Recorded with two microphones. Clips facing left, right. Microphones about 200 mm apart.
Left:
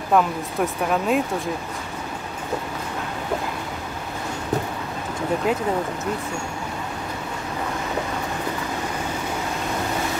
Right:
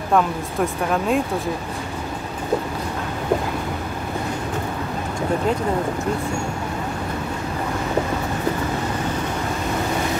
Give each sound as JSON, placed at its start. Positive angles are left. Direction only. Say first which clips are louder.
{"t": 0.1, "sound": "speech", "louder": "even", "side_deg": 0}